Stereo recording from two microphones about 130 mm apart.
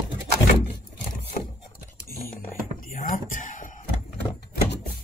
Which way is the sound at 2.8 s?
90° left.